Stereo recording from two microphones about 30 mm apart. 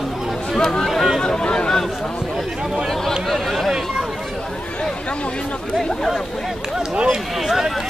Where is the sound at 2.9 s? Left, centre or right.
Centre.